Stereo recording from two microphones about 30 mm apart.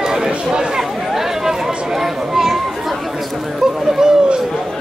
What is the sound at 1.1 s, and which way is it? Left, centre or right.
Chatter, centre.